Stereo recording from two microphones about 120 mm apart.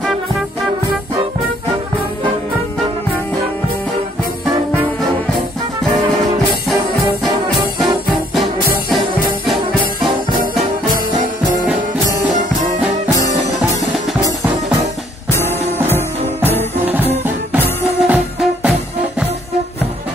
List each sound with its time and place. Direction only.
15.3 s music: 20° left (ahead or behind)
17.5 s music: 15° right (ahead or behind)